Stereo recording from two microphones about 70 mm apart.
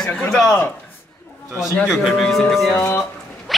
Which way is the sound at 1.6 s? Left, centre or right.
Centre.